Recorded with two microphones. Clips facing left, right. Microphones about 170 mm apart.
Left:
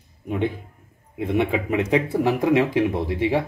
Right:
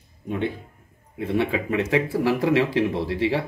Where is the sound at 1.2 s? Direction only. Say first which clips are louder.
Left 1 dB; 20° left (ahead or behind).